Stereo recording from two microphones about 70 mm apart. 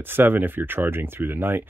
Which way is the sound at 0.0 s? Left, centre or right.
Right.